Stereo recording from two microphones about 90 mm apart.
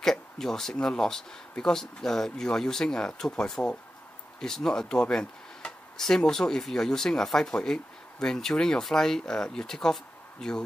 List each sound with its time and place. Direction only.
0.0 s speech: 5° left (ahead or behind)